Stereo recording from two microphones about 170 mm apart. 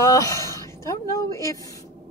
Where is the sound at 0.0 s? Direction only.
20° left (ahead or behind).